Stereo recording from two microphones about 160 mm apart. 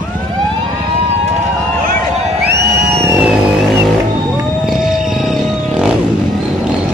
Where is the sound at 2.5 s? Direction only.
90° right.